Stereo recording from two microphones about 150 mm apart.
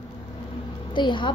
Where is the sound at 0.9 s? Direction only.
30° left (ahead or behind).